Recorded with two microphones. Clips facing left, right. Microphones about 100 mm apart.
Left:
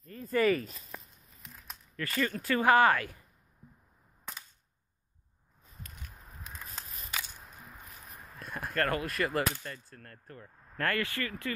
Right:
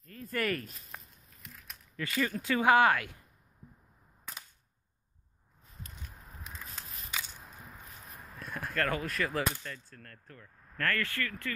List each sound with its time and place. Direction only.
0.0 s speech: 5° left (ahead or behind)
2.0 s speech: 5° right (ahead or behind)
6.5 s single-lens reflex camera: 15° left (ahead or behind)
8.4 s speech: centre (ahead or behind); by 11.5 s 15° left (ahead or behind)